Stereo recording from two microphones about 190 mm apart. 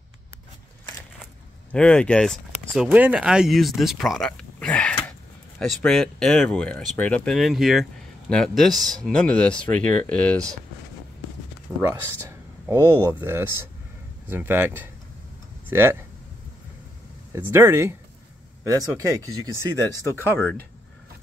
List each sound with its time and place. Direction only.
1.2 s speech: 5° left (ahead or behind)
11.8 s speech: 10° right (ahead or behind)
17.3 s speech: 15° right (ahead or behind)
20.3 s speech: 10° left (ahead or behind)